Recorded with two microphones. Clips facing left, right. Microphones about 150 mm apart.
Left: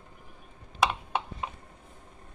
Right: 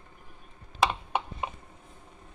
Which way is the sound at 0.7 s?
5° right (ahead or behind).